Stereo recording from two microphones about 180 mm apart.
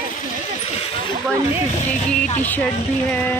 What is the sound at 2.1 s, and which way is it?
Speech, 10° left (ahead or behind).